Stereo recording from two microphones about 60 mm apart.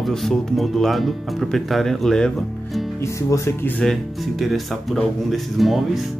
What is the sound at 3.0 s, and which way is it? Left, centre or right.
Speech, left.